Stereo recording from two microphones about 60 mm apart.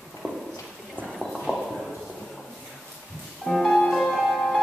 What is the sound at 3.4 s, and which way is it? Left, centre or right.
Music, centre.